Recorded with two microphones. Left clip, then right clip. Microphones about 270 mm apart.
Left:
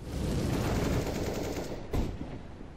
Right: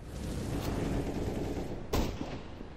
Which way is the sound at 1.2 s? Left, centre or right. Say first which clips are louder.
Left 3 dB; left.